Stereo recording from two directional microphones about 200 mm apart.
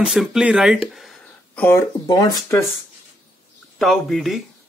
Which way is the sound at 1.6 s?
15° left (ahead or behind).